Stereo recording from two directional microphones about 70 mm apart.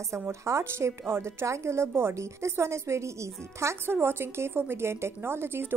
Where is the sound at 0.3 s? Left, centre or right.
Right.